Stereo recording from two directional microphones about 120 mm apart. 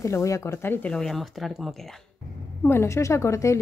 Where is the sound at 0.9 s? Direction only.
5° left (ahead or behind).